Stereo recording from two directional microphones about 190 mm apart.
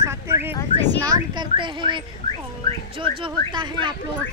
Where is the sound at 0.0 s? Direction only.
10° right (ahead or behind).